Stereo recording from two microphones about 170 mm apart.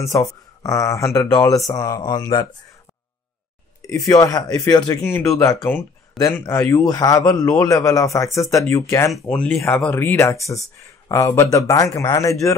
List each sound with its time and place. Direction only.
0.0 s speech: 20° left (ahead or behind)
4.1 s speech: 20° left (ahead or behind)
9.1 s speech: 5° left (ahead or behind)